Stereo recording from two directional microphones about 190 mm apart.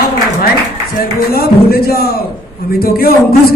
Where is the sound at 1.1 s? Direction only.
55° left (ahead or behind).